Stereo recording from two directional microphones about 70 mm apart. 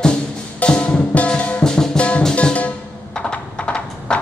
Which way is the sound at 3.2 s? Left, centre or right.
Centre.